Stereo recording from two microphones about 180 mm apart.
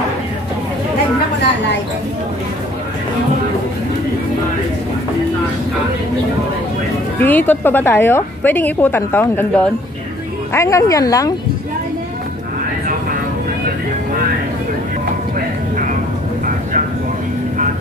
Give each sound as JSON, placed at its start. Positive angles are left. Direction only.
{"t": 7.2, "sound": "a woman's voice", "side_deg": 10}